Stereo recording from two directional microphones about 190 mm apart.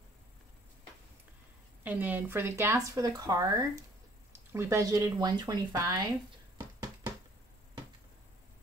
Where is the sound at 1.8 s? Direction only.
10° right (ahead or behind).